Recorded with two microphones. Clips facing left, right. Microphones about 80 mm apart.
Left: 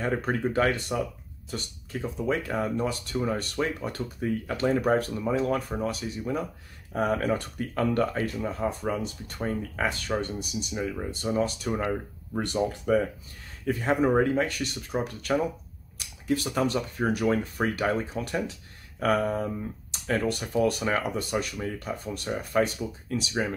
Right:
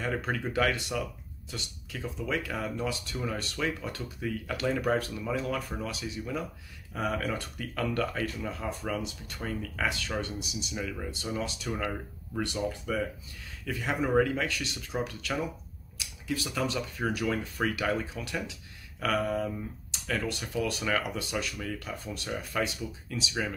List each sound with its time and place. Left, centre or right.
0.0 s speech: left